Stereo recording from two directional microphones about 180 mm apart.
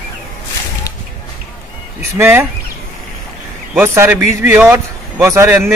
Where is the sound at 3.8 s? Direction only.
15° right (ahead or behind).